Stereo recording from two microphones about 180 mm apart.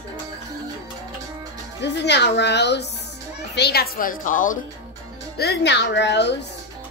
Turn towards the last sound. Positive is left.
turn(degrees=70)  # may be behind; listen again after turning